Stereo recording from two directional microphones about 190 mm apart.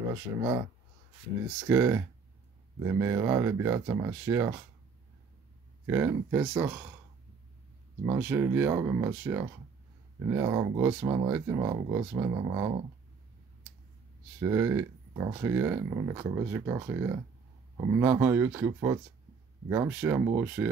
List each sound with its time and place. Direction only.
0.1 s speech: 15° right (ahead or behind)
1.7 s speech: 15° right (ahead or behind)
5.9 s speech: 15° right (ahead or behind)
8.0 s speech: 15° right (ahead or behind)
14.4 s speech: 15° right (ahead or behind)